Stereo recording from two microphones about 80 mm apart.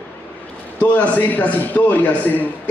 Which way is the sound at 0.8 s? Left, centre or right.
Centre.